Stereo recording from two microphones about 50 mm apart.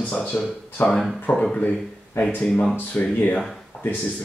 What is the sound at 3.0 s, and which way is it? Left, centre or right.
Speech, left.